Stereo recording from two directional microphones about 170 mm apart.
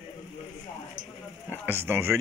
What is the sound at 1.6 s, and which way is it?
Speech, 15° right (ahead or behind).